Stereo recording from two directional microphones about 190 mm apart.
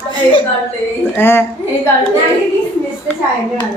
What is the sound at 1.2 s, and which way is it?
Speech, 10° left (ahead or behind).